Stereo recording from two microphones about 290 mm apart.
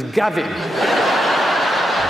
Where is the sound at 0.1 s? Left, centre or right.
Centre.